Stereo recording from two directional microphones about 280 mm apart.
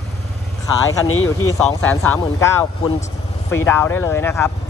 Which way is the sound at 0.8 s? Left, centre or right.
Left.